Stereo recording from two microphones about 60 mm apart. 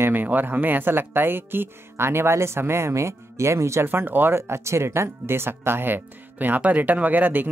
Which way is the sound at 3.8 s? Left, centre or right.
Right.